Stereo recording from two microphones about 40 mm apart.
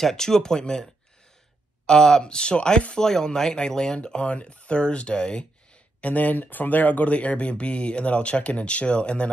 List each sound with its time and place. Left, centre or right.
0.0 s speech: centre
1.9 s speech: centre
5.9 s speech: left